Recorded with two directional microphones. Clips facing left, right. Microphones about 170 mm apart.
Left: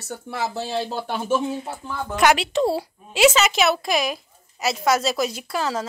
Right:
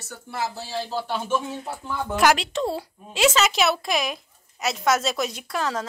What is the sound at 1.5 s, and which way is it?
A woman's voice, 5° left (ahead or behind).